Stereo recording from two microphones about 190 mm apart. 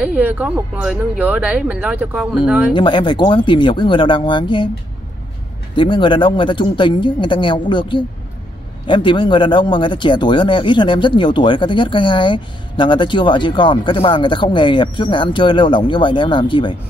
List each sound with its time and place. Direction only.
0.0 s speech: 5° right (ahead or behind)
2.7 s speech: 25° left (ahead or behind)
5.8 s speech: 25° left (ahead or behind)